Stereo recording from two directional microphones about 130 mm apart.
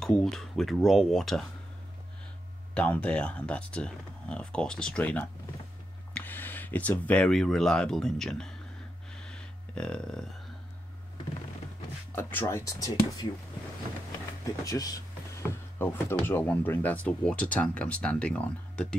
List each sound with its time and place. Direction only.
0.0 s speech: 5° left (ahead or behind)
2.7 s speech: 10° left (ahead or behind)
9.1 s a sound: 5° left (ahead or behind)
12.2 s speech: 15° left (ahead or behind)
14.4 s speech: 25° left (ahead or behind); by 18.9 s 10° left (ahead or behind)